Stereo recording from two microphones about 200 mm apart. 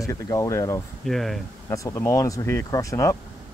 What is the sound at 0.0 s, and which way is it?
Speech, 15° left (ahead or behind).